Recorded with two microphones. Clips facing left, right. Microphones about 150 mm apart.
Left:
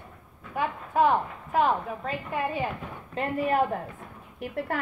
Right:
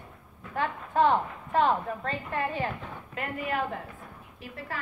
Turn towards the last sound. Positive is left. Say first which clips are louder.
# left 8 dB
turn(degrees=60)  # may be behind; listen again after turning